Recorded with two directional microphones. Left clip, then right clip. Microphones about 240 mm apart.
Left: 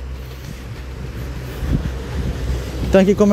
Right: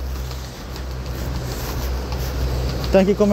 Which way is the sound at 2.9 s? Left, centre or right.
Left.